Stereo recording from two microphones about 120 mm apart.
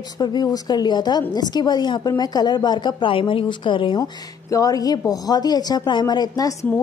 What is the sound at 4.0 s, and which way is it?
A woman's voice, 30° left (ahead or behind).